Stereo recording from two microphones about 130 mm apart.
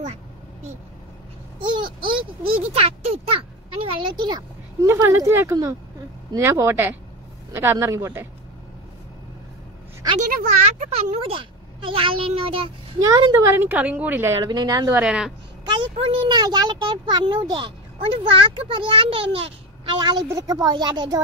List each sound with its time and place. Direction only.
0.0 s vehicle: 60° right (ahead or behind)
1.6 s a sound: 40° right (ahead or behind)
4.8 s speech: 20° right (ahead or behind)
10.1 s speech: 80° right
11.1 s a child's voice: 45° right (ahead or behind)
13.3 s speech: 20° right (ahead or behind)
15.0 s a woman's voice: 5° right (ahead or behind)
15.6 s speech: 35° right (ahead or behind)